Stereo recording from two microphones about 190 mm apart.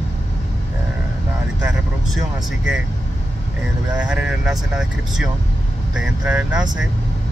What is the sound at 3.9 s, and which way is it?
Speech, 5° right (ahead or behind).